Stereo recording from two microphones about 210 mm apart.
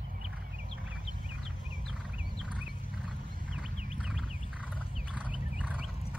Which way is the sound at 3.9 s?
5° right (ahead or behind).